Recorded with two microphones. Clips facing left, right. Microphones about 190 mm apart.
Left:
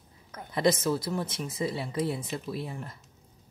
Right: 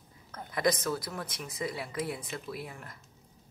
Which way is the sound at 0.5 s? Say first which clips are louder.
Left 4 dB; 25° left (ahead or behind).